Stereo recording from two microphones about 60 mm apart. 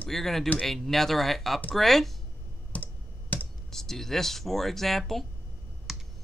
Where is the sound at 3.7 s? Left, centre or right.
Centre.